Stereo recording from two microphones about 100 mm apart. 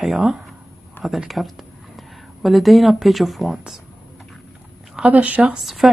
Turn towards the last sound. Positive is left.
turn(degrees=0)  # may be behind; listen again after turning